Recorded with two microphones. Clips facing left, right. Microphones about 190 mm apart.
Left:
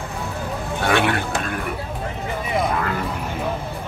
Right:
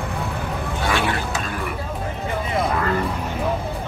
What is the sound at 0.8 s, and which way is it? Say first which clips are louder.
Vehicle: left 4 dB; 60° left (ahead or behind).